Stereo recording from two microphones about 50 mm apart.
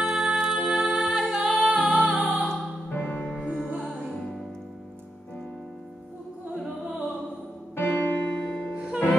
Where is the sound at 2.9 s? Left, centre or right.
Left.